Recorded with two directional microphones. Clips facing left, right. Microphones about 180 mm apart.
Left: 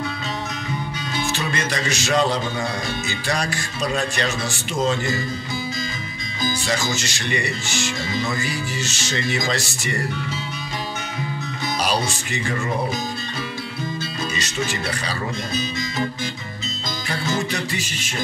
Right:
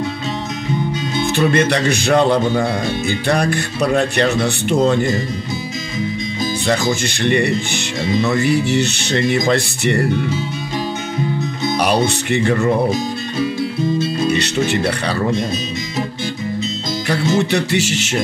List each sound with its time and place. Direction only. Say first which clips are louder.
1.2 s speech: right 11 dB; 55° right (ahead or behind)
6.7 s speech: right 7 dB; 55° right (ahead or behind)
11.8 s speech: right 7 dB; 60° right (ahead or behind)
14.3 s speech: right 9 dB; 65° right (ahead or behind)
17.4 s music: right 9 dB; 70° right (ahead or behind)